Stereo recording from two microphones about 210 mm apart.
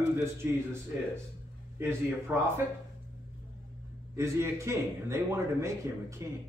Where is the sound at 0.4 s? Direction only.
10° right (ahead or behind).